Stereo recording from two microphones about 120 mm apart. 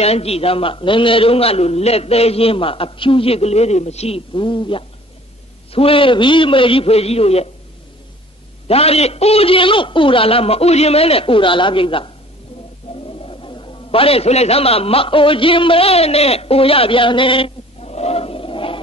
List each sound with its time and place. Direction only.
0.0 s a man's voice: 60° left (ahead or behind)
8.6 s a man's voice: 55° left (ahead or behind)
12.9 s bird: 50° left (ahead or behind)
13.2 s a man's voice: 45° left (ahead or behind)